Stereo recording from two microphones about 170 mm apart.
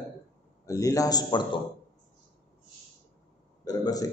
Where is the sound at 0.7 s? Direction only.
20° left (ahead or behind).